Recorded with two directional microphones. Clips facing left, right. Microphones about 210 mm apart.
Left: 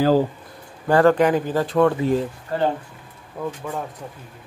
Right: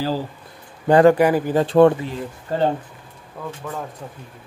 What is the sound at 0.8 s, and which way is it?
Speech, 15° right (ahead or behind).